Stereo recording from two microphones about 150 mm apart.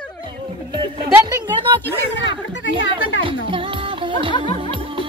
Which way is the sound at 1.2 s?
35° right (ahead or behind).